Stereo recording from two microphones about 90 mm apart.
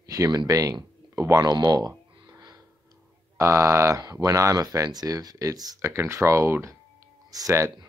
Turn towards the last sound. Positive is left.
turn(degrees=-35)  # may be behind; listen again after turning